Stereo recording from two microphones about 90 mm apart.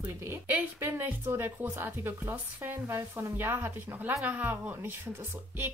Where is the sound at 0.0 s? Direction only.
25° right (ahead or behind).